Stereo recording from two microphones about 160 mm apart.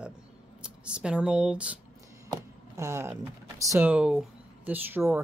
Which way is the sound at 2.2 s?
20° right (ahead or behind).